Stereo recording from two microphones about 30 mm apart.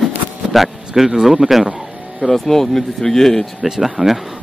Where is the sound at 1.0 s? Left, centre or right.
Centre.